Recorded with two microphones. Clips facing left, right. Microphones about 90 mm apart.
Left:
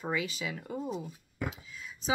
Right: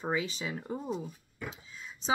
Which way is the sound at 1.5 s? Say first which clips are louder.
Left 1 dB; 30° right (ahead or behind).